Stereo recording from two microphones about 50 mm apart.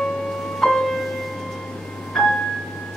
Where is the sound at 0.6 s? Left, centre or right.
Centre.